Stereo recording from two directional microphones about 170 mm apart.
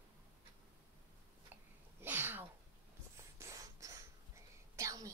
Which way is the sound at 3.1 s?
15° right (ahead or behind).